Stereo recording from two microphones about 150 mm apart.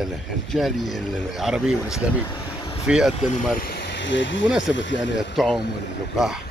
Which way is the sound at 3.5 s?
90° left.